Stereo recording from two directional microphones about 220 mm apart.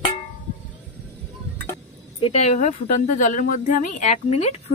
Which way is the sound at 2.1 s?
30° left (ahead or behind).